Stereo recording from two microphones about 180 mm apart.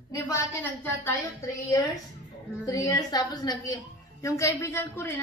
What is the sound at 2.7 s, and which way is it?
A woman's voice, 20° left (ahead or behind).